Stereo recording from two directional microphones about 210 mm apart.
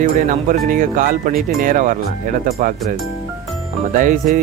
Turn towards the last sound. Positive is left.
turn(degrees=-40)  # may be behind; listen again after turning